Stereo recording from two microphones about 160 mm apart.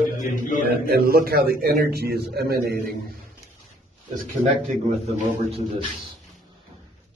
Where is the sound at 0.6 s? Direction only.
70° right (ahead or behind).